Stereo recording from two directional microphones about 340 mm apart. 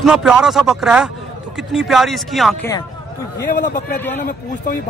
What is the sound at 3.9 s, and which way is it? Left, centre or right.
Speech, centre.